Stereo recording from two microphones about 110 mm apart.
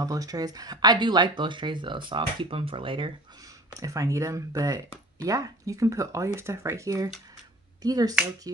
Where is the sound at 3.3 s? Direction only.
30° right (ahead or behind).